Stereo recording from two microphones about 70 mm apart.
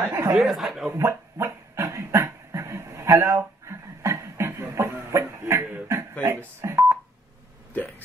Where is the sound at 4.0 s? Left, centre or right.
Right.